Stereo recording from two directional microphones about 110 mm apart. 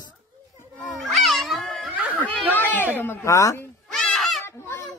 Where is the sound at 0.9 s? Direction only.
Centre (ahead or behind).